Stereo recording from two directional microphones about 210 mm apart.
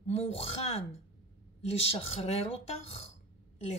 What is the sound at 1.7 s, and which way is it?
A woman's voice, 30° left (ahead or behind).